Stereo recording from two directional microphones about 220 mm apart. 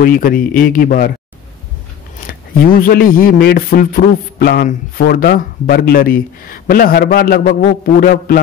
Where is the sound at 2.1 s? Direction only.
40° left (ahead or behind).